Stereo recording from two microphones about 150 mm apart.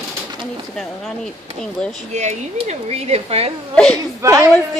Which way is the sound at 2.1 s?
50° right (ahead or behind).